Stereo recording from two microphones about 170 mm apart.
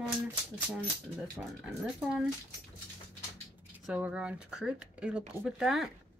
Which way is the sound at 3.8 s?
5° right (ahead or behind).